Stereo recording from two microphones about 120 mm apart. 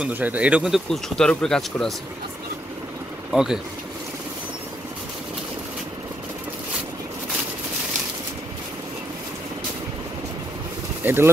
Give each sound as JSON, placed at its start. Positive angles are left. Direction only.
{"t": 0.0, "sound": "speech", "side_deg": -15}
{"t": 3.3, "sound": "speech", "side_deg": -5}
{"t": 11.0, "sound": "speech", "side_deg": -15}